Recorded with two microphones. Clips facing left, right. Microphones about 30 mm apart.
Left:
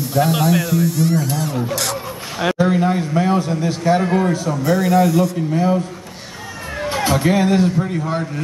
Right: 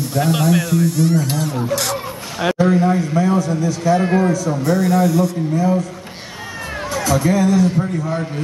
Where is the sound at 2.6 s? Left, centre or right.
Left.